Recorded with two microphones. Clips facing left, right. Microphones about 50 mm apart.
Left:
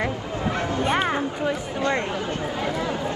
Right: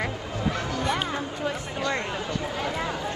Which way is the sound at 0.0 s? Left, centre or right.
Left.